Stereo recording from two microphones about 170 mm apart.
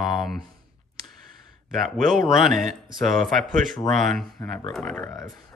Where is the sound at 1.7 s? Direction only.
Centre (ahead or behind).